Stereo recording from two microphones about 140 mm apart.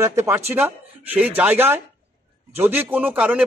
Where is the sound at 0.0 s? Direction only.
20° right (ahead or behind).